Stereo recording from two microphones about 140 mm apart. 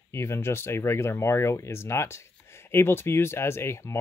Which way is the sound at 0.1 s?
20° left (ahead or behind).